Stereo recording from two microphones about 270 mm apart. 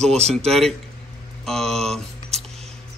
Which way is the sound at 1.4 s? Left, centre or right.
Centre.